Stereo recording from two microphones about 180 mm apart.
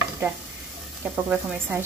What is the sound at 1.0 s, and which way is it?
Speech, 10° right (ahead or behind).